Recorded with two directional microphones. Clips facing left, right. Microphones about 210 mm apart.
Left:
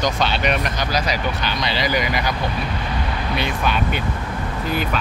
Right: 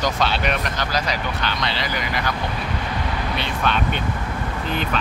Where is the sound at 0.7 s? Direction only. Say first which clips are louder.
Left 2 dB; 15° left (ahead or behind).